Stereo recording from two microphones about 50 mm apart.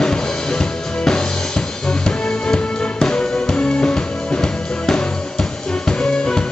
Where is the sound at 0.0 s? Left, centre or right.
Centre.